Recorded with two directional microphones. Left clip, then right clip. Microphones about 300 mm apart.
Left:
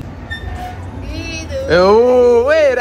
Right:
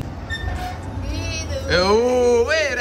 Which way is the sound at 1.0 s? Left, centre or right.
Right.